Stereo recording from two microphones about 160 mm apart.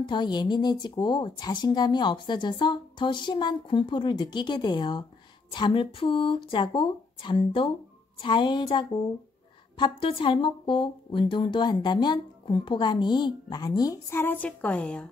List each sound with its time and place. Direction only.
0.0 s speech: 30° left (ahead or behind); by 15.0 s 5° left (ahead or behind)